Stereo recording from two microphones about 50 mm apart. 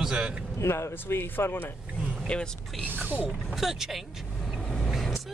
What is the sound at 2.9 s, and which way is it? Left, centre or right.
Speech, right.